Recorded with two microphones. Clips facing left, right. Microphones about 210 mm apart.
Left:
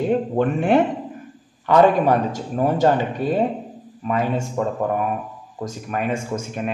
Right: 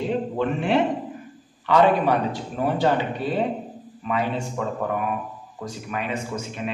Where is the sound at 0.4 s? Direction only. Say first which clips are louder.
Left 4 dB; 50° left (ahead or behind).